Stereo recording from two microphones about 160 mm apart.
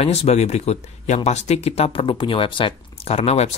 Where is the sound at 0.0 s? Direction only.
40° left (ahead or behind).